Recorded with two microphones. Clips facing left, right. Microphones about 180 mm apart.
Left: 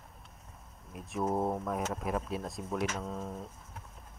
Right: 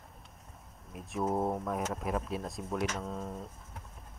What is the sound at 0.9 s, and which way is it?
Speech, centre (ahead or behind).